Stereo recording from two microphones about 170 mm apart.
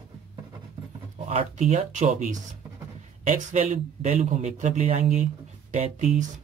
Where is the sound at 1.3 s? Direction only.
40° right (ahead or behind).